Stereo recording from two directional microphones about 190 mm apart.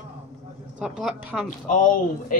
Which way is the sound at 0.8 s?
Centre (ahead or behind).